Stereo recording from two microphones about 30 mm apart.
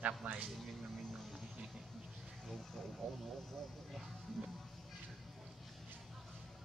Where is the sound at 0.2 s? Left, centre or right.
Right.